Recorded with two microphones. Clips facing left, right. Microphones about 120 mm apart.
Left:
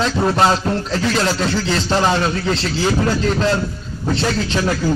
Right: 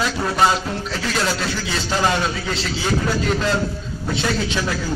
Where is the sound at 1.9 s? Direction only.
30° left (ahead or behind).